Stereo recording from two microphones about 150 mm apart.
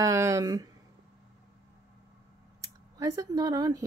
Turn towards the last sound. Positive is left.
turn(degrees=-25)  # may be behind; listen again after turning